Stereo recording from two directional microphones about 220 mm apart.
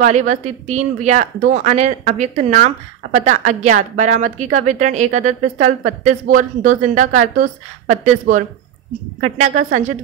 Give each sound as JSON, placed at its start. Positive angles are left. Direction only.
{"t": 0.0, "sound": "speech", "side_deg": -35}